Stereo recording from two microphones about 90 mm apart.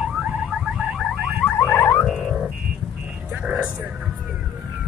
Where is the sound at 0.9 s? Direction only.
Centre (ahead or behind).